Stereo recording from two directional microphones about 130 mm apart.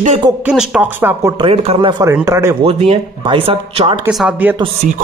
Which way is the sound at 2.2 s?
20° right (ahead or behind).